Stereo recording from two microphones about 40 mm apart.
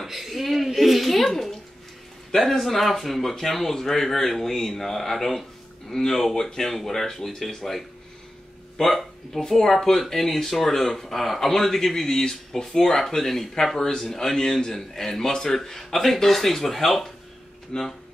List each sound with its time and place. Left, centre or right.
0.0 s a sound: centre
2.3 s a man's voice: centre
17.7 s speech: left